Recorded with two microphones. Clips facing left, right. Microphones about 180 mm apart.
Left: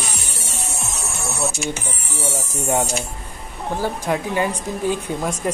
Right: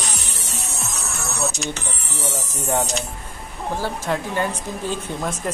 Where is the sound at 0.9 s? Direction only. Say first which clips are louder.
Left 1 dB; 25° left (ahead or behind).